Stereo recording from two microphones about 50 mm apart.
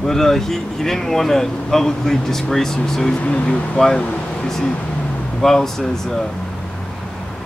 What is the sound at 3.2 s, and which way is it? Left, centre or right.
Speech, left.